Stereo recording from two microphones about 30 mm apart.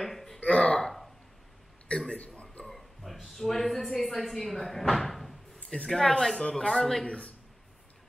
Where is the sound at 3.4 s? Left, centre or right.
Centre.